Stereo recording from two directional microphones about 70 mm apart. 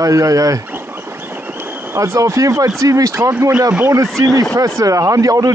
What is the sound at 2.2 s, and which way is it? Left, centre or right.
Speech, right.